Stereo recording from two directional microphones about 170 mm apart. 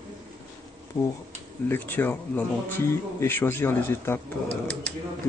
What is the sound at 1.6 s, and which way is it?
A man's voice, 10° left (ahead or behind).